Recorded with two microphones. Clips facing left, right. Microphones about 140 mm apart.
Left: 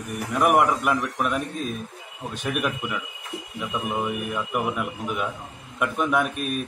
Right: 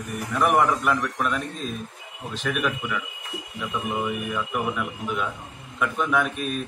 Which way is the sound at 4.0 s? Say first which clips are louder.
Even; 15° left (ahead or behind).